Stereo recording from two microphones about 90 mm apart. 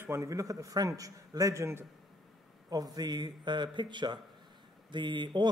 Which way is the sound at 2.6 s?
45° right (ahead or behind).